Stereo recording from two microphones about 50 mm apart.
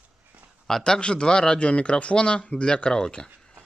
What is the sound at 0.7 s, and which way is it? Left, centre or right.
A man's voice, centre.